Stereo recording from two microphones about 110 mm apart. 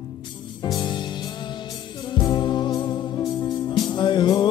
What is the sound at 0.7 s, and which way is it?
Music, 45° left (ahead or behind).